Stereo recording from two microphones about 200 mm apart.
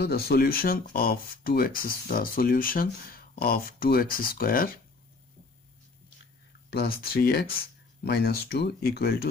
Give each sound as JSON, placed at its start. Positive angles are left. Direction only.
{"t": 0.0, "sound": "speech", "side_deg": 50}
{"t": 6.7, "sound": "speech", "side_deg": 50}